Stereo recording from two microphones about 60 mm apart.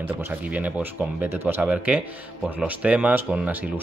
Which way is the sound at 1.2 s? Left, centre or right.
Right.